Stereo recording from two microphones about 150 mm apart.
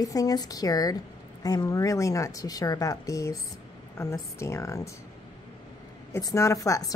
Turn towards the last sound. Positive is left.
turn(degrees=20)  # may be behind; listen again after turning